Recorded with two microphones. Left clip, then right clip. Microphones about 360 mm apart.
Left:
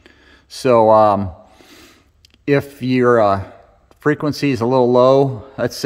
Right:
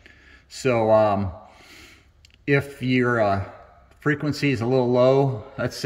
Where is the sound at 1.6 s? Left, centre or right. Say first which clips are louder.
Left 2 dB; left.